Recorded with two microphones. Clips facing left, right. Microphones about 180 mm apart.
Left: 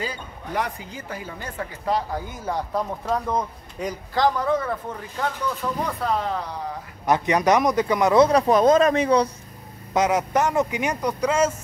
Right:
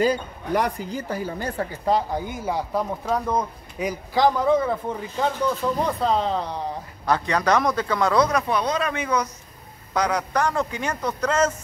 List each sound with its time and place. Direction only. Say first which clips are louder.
0.0 s a woman's voice: right 10 dB; 40° right (ahead or behind); by 6.5 s 25° right (ahead or behind)
7.1 s a man's voice: left 2 dB; 20° left (ahead or behind); by 9.3 s 35° left (ahead or behind)
9.9 s a man's voice: left 3 dB; 20° left (ahead or behind)